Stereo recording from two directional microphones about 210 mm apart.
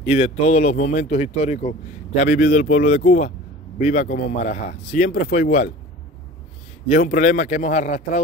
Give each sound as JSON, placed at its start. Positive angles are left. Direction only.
{"t": 0.0, "sound": "speech", "side_deg": 30}
{"t": 6.9, "sound": "speech", "side_deg": 35}